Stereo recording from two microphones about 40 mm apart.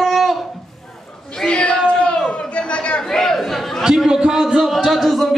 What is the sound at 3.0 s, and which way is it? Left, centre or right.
Speech, centre.